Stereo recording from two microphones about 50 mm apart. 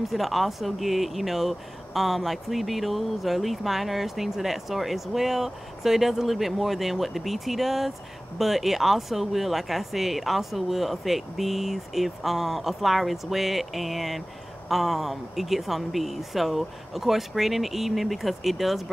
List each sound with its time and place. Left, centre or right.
0.0 s speech: centre